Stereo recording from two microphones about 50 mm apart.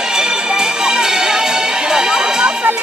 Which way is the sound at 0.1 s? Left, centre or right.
Centre.